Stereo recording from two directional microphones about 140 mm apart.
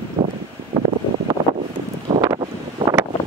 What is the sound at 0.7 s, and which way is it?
Wind noise, 40° right (ahead or behind).